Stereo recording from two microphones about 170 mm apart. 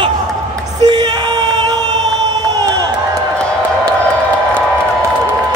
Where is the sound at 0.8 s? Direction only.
30° right (ahead or behind).